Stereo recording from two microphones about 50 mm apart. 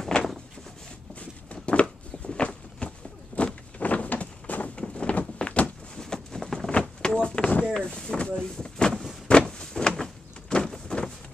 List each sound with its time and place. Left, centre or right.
1.5 s a sound: left
7.8 s speech: centre
9.3 s power windows: centre